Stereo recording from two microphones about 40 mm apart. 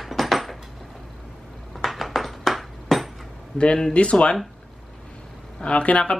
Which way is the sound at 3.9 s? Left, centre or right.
Left.